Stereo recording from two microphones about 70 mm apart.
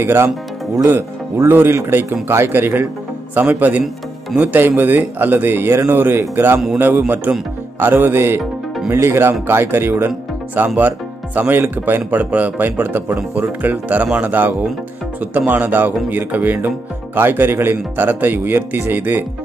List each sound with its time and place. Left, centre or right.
0.0 s speech: right
1.5 s speech: right